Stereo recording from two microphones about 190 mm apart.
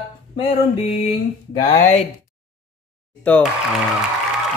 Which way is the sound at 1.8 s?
35° left (ahead or behind).